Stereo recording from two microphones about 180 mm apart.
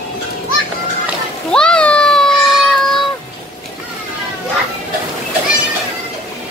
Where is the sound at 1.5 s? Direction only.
5° left (ahead or behind).